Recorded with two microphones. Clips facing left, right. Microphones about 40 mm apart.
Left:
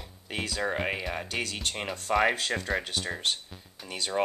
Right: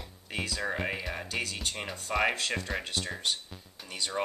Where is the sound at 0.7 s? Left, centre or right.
Left.